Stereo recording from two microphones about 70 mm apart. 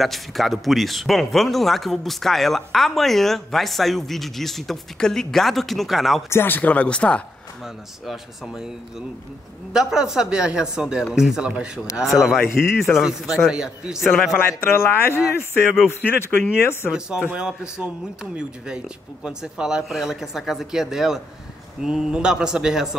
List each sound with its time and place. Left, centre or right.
0.0 s speech: centre
6.3 s speech: left
7.6 s a man's voice: centre
13.5 s a man's voice: centre
14.1 s speech: centre
14.8 s speech: left
16.0 s speech: left
17.3 s a man's voice: centre